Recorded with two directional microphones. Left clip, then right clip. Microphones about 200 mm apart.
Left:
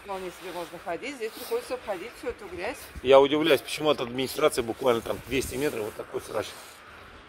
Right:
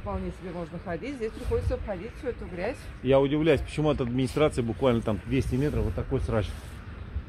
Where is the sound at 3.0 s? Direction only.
50° left (ahead or behind).